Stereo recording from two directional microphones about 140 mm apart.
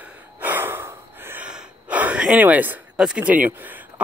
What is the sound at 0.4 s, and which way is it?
Gasp, 15° right (ahead or behind).